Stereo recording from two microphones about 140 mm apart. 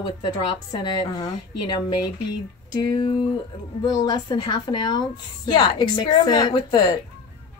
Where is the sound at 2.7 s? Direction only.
30° left (ahead or behind).